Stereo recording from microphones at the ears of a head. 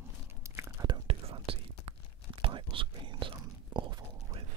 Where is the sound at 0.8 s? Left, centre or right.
Right.